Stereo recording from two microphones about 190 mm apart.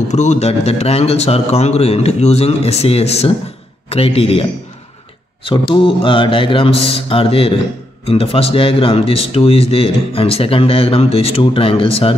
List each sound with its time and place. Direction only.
0.1 s a man's voice: 35° left (ahead or behind)